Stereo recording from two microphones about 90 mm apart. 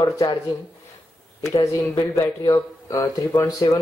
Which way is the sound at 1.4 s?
35° left (ahead or behind).